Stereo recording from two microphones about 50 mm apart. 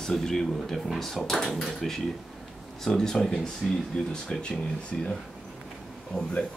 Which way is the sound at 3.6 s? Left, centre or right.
Centre.